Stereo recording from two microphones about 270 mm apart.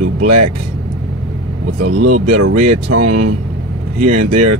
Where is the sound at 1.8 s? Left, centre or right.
Right.